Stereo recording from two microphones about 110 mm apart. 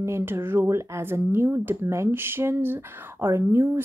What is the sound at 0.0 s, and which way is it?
Speech, 20° right (ahead or behind).